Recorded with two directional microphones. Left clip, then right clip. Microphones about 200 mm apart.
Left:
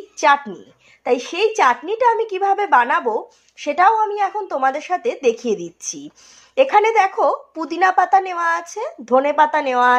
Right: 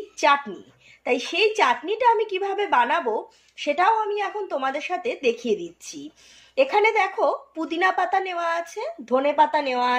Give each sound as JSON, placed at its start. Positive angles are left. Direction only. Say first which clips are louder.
{"t": 0.2, "sound": "speech", "louder": "left 4 dB", "side_deg": 20}